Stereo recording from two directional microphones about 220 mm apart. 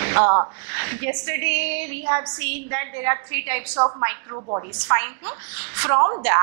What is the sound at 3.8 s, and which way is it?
Speech, 25° right (ahead or behind).